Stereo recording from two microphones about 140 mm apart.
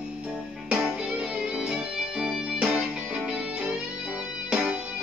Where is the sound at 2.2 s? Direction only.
5° right (ahead or behind).